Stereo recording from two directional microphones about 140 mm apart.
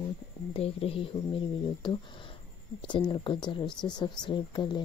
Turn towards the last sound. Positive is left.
turn(degrees=35)  # may be behind; listen again after turning